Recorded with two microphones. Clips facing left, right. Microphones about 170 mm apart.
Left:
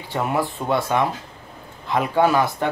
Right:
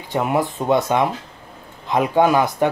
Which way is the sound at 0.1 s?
15° right (ahead or behind).